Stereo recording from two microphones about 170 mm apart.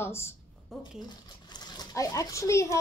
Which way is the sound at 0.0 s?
15° left (ahead or behind).